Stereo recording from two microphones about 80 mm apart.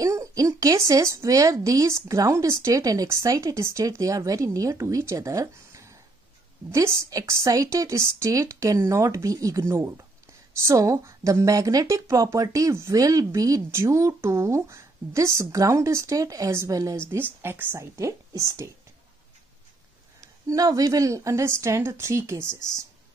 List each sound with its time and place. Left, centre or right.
0.0 s speech: right
17.1 s speech: right
17.7 s speech: right
20.2 s speech: right